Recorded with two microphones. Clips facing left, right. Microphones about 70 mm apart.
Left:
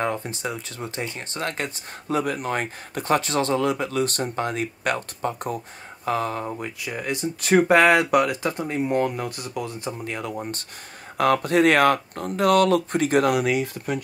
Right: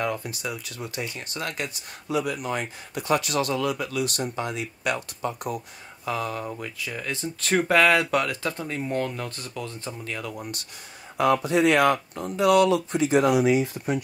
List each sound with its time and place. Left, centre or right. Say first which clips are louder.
0.0 s speech: left 2 dB; left
6.4 s speech: left 3 dB; centre
7.6 s speech: left 1 dB; left
9.9 s speech: left 4 dB; left
11.1 s speech: left 2 dB; left